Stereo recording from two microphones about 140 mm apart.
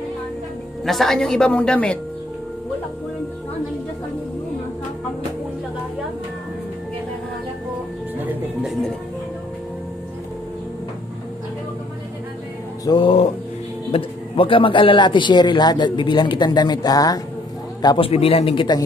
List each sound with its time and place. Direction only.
0.8 s a woman's voice: centre (ahead or behind)
12.8 s a man's voice: 35° left (ahead or behind)
17.8 s a man's voice: 40° left (ahead or behind)